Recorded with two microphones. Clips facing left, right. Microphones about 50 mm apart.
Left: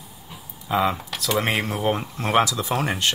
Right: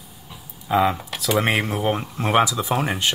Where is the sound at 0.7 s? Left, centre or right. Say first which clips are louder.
Right 3 dB; centre.